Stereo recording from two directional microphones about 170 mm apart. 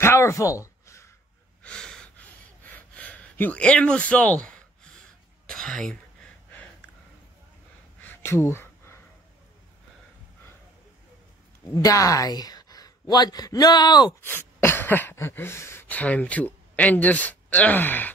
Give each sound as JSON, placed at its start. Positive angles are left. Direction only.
{"t": 0.0, "sound": "a sound", "side_deg": 15}
{"t": 1.6, "sound": "gasp", "side_deg": 5}
{"t": 5.5, "sound": "throat clearing", "side_deg": 5}
{"t": 8.0, "sound": "a sound", "side_deg": 15}
{"t": 11.6, "sound": "speech", "side_deg": 20}
{"t": 14.2, "sound": "speech", "side_deg": 15}